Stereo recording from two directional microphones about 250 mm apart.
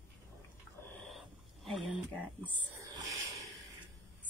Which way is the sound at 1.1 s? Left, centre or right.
Centre.